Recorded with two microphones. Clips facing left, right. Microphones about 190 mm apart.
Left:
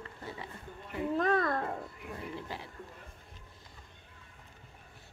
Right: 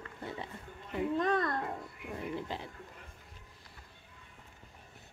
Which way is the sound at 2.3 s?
20° right (ahead or behind).